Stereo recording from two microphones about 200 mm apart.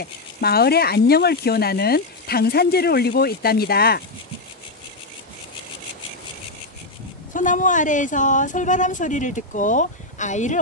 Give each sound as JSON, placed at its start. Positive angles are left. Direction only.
{"t": 0.0, "sound": "speech", "side_deg": 50}
{"t": 7.3, "sound": "speech", "side_deg": 40}